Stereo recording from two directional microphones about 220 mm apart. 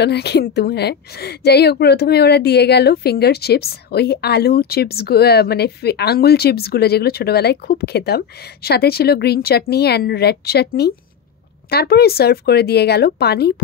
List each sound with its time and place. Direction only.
0.0 s speech: 50° left (ahead or behind)